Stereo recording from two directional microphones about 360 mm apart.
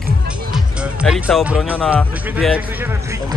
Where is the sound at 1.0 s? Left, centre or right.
Centre.